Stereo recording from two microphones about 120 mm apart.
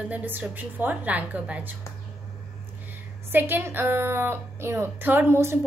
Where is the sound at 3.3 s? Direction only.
20° right (ahead or behind).